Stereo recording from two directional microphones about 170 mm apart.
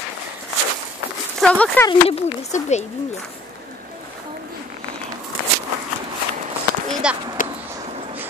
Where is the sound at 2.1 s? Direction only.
40° left (ahead or behind).